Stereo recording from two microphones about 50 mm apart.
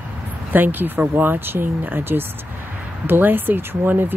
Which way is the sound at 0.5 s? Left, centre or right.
Right.